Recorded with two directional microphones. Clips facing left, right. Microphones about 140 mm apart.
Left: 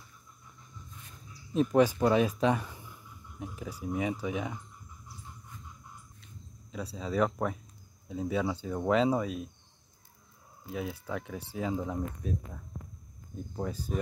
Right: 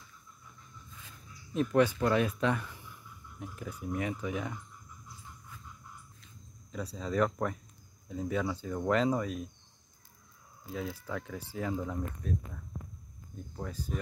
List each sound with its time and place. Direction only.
1.5 s speech: 20° left (ahead or behind)
6.7 s speech: 5° left (ahead or behind)
10.7 s speech: 15° left (ahead or behind)
13.6 s speech: 20° left (ahead or behind)